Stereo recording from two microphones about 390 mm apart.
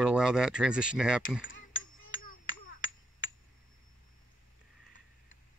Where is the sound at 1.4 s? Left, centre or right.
Left.